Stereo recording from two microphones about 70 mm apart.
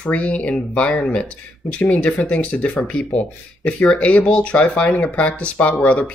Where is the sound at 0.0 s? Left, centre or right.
Centre.